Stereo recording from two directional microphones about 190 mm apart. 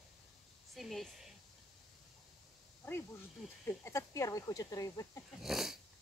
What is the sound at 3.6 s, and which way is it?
Speech, 15° left (ahead or behind).